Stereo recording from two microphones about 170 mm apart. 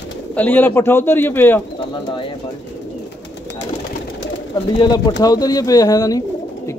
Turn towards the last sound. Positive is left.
turn(degrees=20)  # may be behind; listen again after turning